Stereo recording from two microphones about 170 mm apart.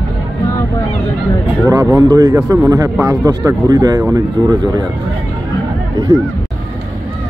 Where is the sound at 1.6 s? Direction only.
20° right (ahead or behind).